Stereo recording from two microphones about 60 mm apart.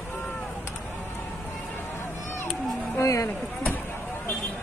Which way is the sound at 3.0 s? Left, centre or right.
Left.